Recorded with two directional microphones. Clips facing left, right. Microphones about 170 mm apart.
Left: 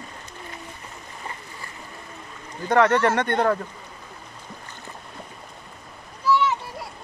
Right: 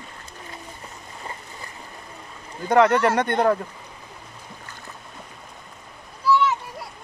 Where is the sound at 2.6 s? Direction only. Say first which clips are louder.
Right 1 dB; 15° right (ahead or behind).